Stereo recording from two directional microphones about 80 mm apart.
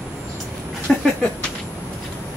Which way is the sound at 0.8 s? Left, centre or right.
Centre.